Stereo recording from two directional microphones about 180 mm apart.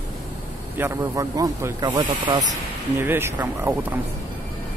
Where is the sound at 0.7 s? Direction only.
15° right (ahead or behind).